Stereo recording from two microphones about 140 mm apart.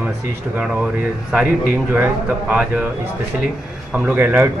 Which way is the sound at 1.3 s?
10° right (ahead or behind).